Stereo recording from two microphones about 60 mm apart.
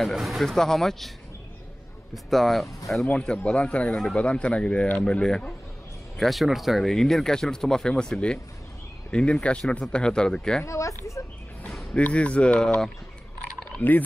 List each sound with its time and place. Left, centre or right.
0.0 s speech: centre
2.2 s speech: centre
3.1 s speech: centre
6.1 s speech: centre
10.6 s speech: left
11.9 s speech: left
13.7 s speech: left